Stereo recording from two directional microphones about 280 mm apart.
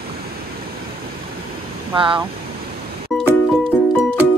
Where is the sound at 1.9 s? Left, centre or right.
Centre.